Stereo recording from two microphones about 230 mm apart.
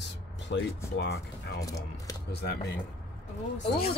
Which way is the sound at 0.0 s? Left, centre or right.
Left.